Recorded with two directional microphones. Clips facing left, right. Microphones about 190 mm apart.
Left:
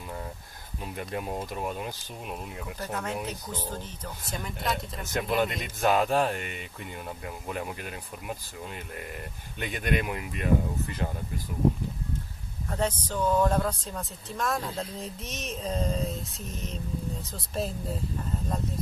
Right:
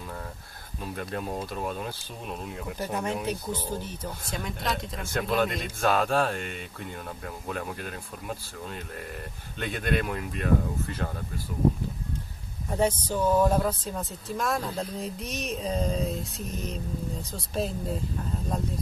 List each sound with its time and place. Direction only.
0.9 s speech: 10° left (ahead or behind)
2.8 s speech: 15° right (ahead or behind)
4.3 s speech: 5° left (ahead or behind)
5.0 s speech: 15° left (ahead or behind)
12.6 s speech: 10° right (ahead or behind)